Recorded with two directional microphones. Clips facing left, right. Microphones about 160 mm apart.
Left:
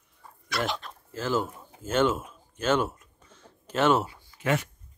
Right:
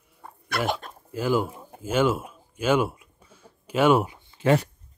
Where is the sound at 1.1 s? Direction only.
10° right (ahead or behind).